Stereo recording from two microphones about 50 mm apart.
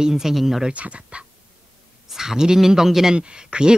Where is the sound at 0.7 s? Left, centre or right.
Right.